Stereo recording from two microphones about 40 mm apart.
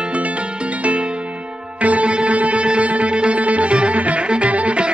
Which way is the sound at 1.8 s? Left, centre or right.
Right.